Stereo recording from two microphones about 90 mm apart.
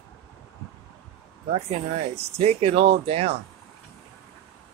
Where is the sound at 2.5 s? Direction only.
90° right.